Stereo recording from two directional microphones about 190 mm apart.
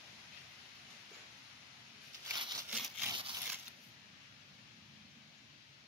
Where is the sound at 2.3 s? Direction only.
20° right (ahead or behind).